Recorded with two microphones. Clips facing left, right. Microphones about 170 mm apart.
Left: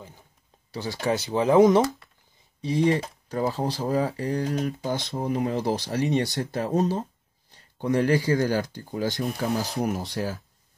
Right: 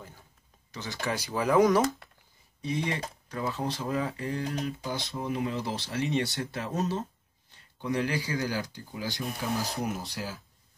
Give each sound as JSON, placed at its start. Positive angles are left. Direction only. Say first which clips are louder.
{"t": 0.7, "sound": "speech", "louder": "left 7 dB", "side_deg": 35}
{"t": 2.6, "sound": "speech", "louder": "left 9 dB", "side_deg": 35}
{"t": 7.5, "sound": "speech", "louder": "left 6 dB", "side_deg": 45}